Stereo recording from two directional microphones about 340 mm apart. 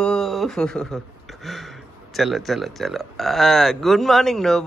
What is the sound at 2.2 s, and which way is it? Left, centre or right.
Speech, centre.